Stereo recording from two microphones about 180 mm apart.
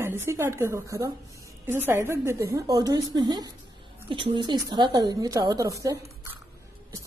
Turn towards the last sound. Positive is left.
turn(degrees=-20)  # may be behind; listen again after turning